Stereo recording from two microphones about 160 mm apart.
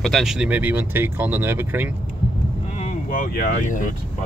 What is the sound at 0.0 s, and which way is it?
Speech, centre (ahead or behind).